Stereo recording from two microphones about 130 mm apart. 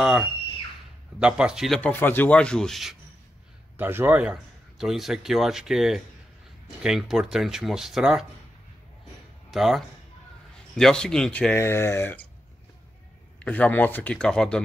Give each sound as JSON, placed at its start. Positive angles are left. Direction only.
{"t": 0.0, "sound": "a man's voice", "side_deg": -5}
{"t": 1.8, "sound": "speech", "side_deg": 15}
{"t": 3.7, "sound": "a man's voice", "side_deg": -15}
{"t": 9.5, "sound": "a man's voice", "side_deg": -5}
{"t": 11.5, "sound": "speech", "side_deg": 20}
{"t": 13.4, "sound": "speech", "side_deg": 10}